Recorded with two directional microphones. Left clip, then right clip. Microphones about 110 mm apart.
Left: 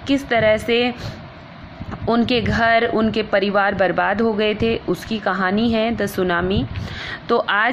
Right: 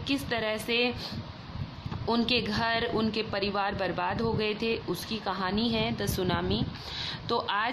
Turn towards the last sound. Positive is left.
turn(degrees=40)  # may be behind; listen again after turning